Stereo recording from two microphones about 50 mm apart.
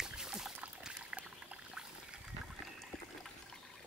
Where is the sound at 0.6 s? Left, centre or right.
Right.